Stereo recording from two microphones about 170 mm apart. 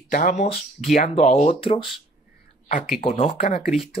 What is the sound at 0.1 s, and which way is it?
Speech, 50° left (ahead or behind).